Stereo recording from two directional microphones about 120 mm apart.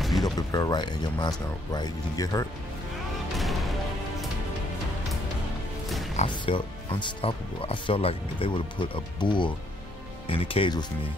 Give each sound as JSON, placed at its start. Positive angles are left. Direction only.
{"t": 0.2, "sound": "speech", "side_deg": 30}
{"t": 3.3, "sound": "music", "side_deg": 0}
{"t": 6.2, "sound": "speech", "side_deg": 45}